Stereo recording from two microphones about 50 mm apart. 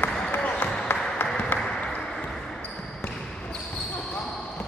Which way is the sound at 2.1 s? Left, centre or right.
Centre.